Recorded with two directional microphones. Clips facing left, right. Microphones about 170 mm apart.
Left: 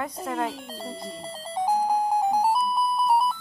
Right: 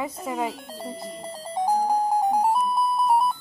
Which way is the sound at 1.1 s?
15° right (ahead or behind).